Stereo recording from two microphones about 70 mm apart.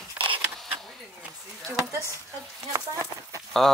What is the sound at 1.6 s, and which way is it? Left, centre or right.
Speech, right.